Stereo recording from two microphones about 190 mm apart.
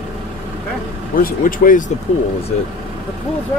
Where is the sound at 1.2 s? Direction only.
45° left (ahead or behind).